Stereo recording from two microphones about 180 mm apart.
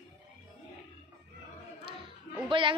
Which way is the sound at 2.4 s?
30° right (ahead or behind).